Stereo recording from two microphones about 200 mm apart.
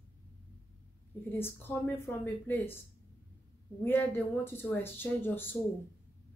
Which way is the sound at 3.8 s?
10° left (ahead or behind).